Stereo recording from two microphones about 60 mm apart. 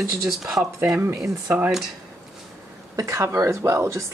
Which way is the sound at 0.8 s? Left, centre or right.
Right.